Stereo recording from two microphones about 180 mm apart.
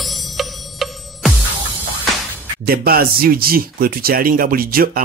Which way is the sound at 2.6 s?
55° right (ahead or behind).